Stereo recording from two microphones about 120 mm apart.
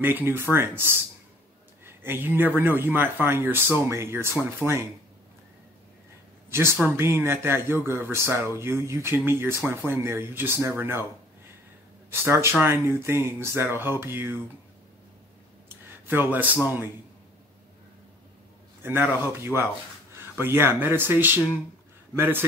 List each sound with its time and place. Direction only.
0.0 s speech: 15° right (ahead or behind)
6.5 s speech: 20° right (ahead or behind)
12.1 s speech: 20° right (ahead or behind)
15.7 s a sound: 20° right (ahead or behind)
16.6 s speech: 15° right (ahead or behind)
18.8 s a man's voice: 20° right (ahead or behind)